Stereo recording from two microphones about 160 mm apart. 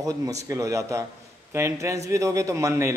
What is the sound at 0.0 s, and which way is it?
A man's voice, 20° right (ahead or behind).